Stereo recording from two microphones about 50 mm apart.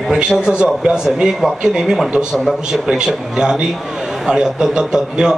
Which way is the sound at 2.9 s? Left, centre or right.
Centre.